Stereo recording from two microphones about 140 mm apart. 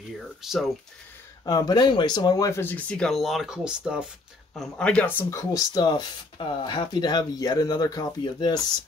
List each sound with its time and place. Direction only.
0.2 s speech: centre (ahead or behind)
1.4 s speech: 25° left (ahead or behind)
2.6 s speech: 10° left (ahead or behind); by 4.1 s 5° right (ahead or behind)
4.6 s speech: 5° left (ahead or behind)
5.3 s speech: 25° left (ahead or behind)